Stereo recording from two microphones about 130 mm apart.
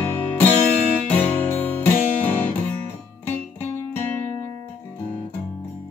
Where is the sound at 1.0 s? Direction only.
15° left (ahead or behind).